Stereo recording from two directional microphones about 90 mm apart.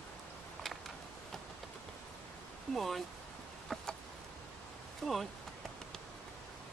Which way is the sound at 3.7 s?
5° left (ahead or behind).